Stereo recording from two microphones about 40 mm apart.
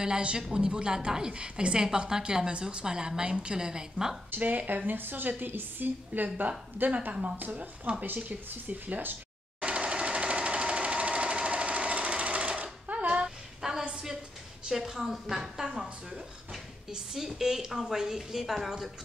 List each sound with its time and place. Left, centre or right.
0.0 s a woman's voice: right
4.4 s a woman's voice: right
9.6 s jackhammer: right
13.6 s a sound: centre
14.7 s a woman's voice: centre
17.1 s a woman's voice: centre